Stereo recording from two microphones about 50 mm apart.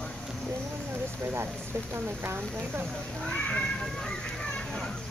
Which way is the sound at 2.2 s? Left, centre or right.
Right.